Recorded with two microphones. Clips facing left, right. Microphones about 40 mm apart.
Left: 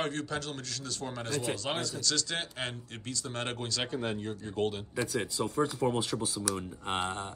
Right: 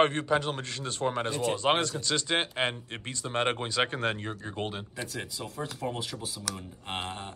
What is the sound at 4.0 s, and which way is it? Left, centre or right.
Speech, right.